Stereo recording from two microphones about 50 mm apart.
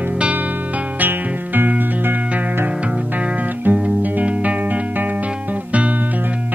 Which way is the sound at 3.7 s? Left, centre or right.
Right.